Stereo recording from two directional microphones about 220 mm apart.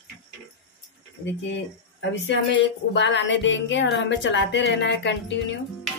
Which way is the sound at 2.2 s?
55° left (ahead or behind).